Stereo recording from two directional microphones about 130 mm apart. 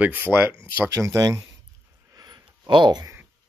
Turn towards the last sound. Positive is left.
turn(degrees=-30)  # may be behind; listen again after turning